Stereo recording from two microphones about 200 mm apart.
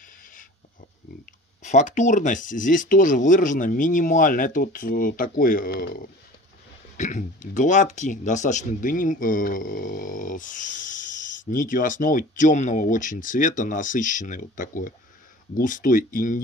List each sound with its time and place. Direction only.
1.6 s speech: 35° left (ahead or behind)